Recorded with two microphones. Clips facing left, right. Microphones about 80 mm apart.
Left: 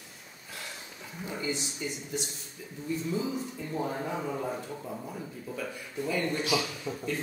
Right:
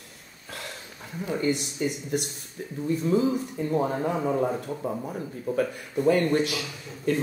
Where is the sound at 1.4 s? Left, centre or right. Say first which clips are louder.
Right 8 dB; right.